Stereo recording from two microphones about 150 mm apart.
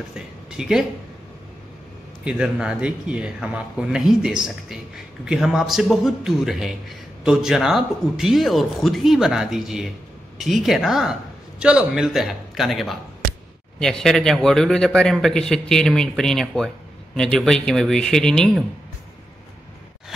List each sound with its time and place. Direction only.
0.1 s a woman's voice: 5° right (ahead or behind)
2.2 s a man's voice: 5° right (ahead or behind)